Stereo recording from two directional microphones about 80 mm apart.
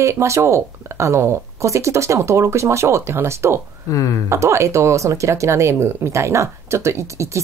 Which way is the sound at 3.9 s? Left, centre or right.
Left.